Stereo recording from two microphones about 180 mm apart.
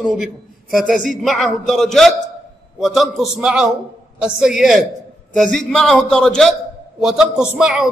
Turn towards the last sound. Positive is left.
turn(degrees=-5)  # may be behind; listen again after turning